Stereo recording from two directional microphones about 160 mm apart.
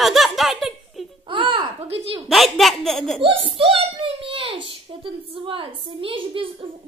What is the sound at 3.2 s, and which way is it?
A child's voice, 35° right (ahead or behind).